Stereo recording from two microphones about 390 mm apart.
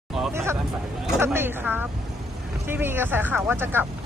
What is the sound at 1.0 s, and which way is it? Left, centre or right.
Speech, centre.